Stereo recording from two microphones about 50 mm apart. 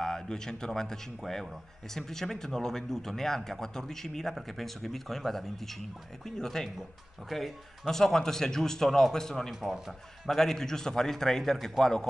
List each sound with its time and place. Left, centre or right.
0.0 s a man's voice: centre
9.6 s speech: centre
10.2 s a man's voice: centre